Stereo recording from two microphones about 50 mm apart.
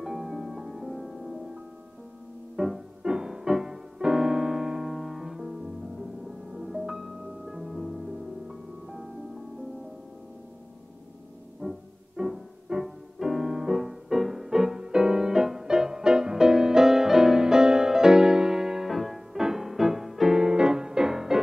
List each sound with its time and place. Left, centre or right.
0.0 s music: centre
3.0 s piano: centre
11.6 s music: right
12.2 s music: centre
20.3 s music: centre